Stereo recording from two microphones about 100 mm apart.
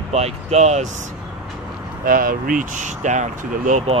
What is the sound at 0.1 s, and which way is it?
Speech, 90° right.